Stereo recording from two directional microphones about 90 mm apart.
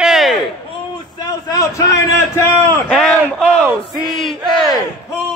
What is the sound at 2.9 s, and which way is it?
Speech, 5° left (ahead or behind).